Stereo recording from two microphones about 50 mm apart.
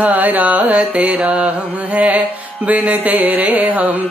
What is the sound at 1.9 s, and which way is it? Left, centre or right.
Mantra, right.